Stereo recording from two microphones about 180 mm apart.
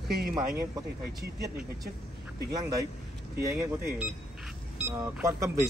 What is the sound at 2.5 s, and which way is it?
Speech, 20° right (ahead or behind).